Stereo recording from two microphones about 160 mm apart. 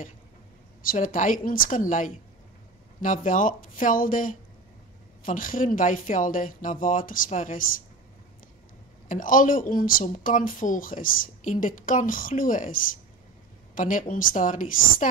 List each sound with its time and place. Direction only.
0.8 s speech: 55° left (ahead or behind)
9.1 s speech: 55° left (ahead or behind)
13.7 s speech: 55° left (ahead or behind)